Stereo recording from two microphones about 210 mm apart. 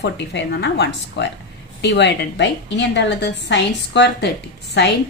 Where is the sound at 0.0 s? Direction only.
55° left (ahead or behind).